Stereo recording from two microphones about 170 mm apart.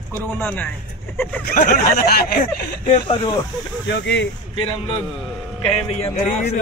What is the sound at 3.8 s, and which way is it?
Speech, 90° left.